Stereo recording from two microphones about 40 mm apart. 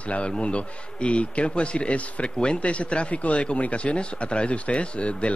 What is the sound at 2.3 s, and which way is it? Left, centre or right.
Speech, left.